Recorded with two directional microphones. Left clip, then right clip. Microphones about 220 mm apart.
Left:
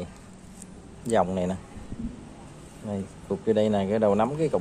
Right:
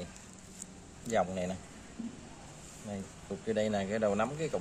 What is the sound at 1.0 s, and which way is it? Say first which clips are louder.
Speech: left 8 dB; 25° left (ahead or behind).